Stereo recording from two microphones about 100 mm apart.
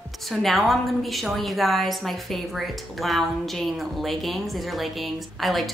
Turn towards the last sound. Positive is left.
turn(degrees=0)  # may be behind; listen again after turning